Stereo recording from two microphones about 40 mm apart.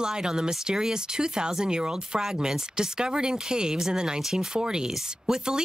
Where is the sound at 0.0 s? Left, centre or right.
Centre.